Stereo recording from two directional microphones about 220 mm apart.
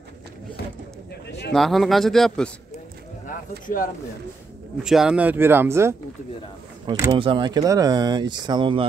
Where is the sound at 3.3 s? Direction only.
35° left (ahead or behind).